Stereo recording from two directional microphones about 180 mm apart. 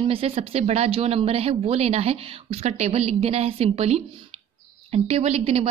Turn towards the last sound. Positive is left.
turn(degrees=-35)  # may be behind; listen again after turning